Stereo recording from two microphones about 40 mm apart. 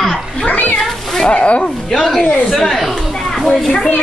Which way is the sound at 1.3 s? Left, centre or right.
Left.